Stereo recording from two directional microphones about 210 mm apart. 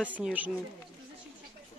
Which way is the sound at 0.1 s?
5° right (ahead or behind).